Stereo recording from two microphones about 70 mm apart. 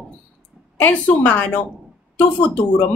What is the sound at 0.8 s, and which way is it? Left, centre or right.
Speech, left.